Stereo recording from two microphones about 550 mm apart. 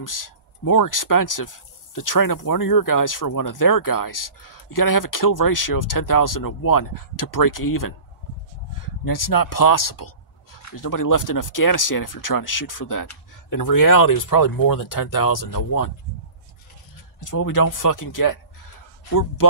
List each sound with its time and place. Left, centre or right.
0.0 s speech: left
9.0 s speech: left
17.2 s speech: left